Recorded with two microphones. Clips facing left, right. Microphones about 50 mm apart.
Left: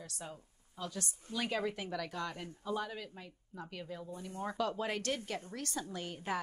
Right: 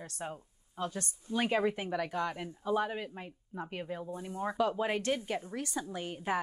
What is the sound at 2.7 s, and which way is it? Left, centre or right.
Speech, right.